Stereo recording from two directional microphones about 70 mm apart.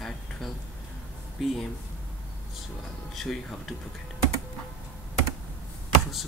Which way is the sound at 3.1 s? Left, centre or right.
Centre.